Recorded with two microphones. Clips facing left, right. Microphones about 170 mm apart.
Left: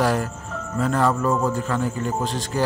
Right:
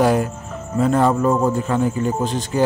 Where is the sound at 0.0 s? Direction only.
20° right (ahead or behind).